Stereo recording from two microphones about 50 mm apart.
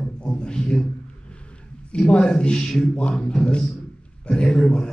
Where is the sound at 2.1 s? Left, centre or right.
Centre.